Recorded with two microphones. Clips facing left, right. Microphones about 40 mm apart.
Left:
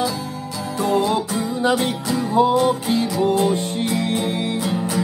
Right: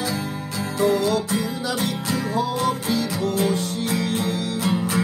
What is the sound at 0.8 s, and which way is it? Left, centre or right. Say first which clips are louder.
Music: left 1 dB; left.